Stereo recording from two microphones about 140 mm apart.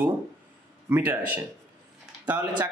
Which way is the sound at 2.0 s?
10° right (ahead or behind).